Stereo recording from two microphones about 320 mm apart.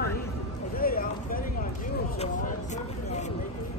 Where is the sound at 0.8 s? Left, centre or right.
Left.